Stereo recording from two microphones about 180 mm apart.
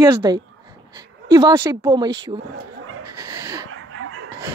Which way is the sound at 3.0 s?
20° right (ahead or behind).